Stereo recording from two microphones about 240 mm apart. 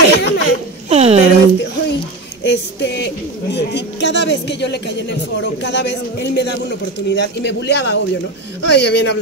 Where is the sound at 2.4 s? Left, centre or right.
Left.